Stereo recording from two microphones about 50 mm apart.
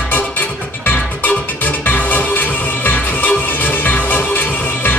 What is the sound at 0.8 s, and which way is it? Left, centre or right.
Music, left.